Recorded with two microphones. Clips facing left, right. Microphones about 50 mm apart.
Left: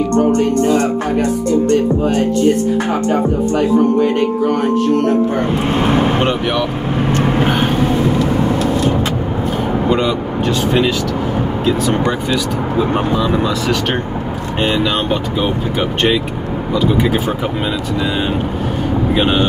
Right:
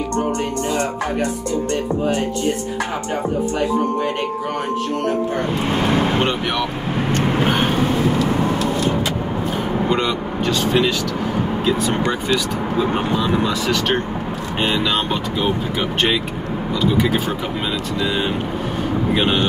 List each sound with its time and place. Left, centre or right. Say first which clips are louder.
0.3 s music: left 8 dB; left
3.5 s speech: left 9 dB; centre
5.4 s music: left 4 dB; left
6.2 s speech: left 4 dB; centre
9.8 s speech: left 5 dB; centre
12.9 s speech: left 3 dB; centre
19.1 s speech: left 4 dB; centre